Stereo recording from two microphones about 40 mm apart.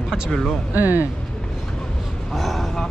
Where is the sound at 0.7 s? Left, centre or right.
Right.